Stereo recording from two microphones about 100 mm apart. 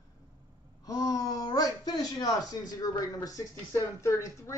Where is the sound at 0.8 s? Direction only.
35° left (ahead or behind).